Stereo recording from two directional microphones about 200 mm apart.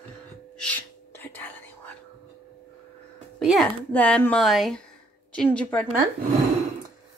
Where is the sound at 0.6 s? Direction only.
10° left (ahead or behind).